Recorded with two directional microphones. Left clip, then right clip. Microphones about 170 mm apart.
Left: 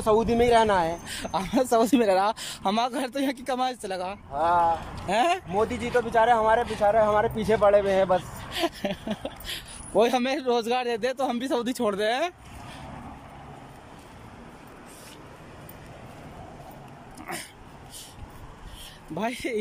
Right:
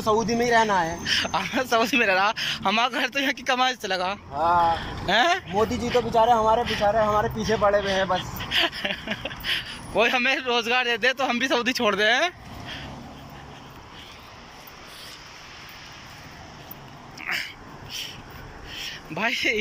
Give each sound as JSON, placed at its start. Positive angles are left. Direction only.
{"t": 0.0, "sound": "speech", "side_deg": 25}
{"t": 17.2, "sound": "cat", "side_deg": 35}
{"t": 19.1, "sound": "speech", "side_deg": 20}